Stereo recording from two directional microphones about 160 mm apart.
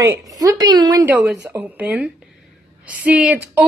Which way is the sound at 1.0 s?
10° right (ahead or behind).